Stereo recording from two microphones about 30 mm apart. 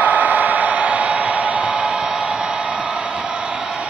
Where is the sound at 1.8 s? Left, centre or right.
Right.